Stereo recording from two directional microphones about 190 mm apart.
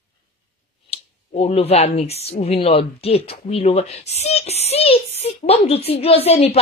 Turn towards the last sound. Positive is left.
turn(degrees=30)  # may be behind; listen again after turning